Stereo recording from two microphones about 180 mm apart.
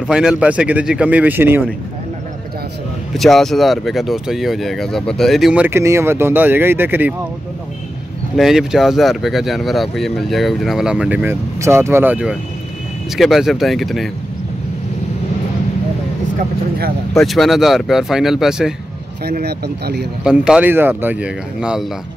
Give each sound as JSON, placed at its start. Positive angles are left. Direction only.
{"t": 0.0, "sound": "speech", "side_deg": -5}
{"t": 3.2, "sound": "speech", "side_deg": 0}
{"t": 8.4, "sound": "speech", "side_deg": 0}
{"t": 16.3, "sound": "speech", "side_deg": -55}
{"t": 17.1, "sound": "speech", "side_deg": 0}
{"t": 19.2, "sound": "speech", "side_deg": -65}
{"t": 20.2, "sound": "speech", "side_deg": -5}